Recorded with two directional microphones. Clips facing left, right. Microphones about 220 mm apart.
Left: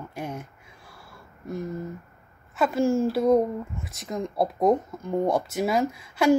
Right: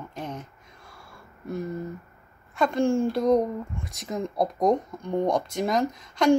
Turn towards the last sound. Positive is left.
turn(degrees=5)  # may be behind; listen again after turning